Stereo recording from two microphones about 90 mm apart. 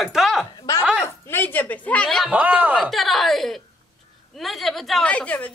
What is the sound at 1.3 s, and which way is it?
Speech, 20° left (ahead or behind).